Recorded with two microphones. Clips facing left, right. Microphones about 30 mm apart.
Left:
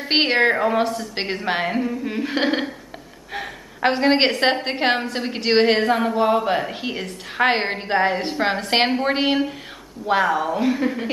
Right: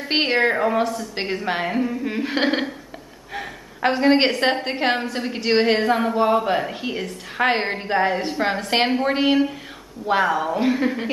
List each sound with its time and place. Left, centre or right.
0.1 s a woman's voice: centre
0.7 s a woman's voice: left
1.8 s speech: centre
3.3 s a sound: centre
4.6 s a woman's voice: centre
10.0 s a woman's voice: centre